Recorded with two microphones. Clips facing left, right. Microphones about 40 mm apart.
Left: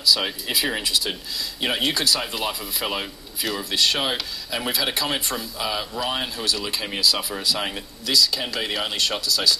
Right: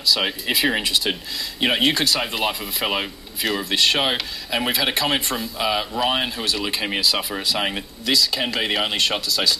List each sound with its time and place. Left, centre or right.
0.0 s speech: centre